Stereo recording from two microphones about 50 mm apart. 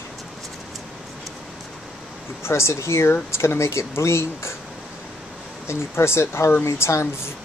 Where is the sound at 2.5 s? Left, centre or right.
Left.